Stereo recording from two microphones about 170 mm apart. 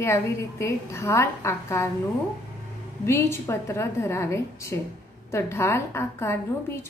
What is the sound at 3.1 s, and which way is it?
Speech, 15° left (ahead or behind).